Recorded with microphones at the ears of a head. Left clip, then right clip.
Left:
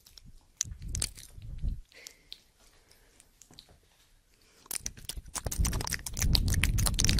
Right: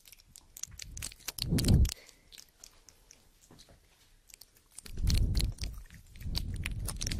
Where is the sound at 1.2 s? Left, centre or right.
Right.